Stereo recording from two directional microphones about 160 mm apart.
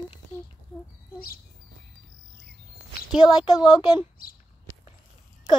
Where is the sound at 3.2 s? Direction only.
25° left (ahead or behind).